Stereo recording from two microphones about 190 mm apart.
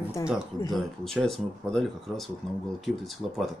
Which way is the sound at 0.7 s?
Centre (ahead or behind).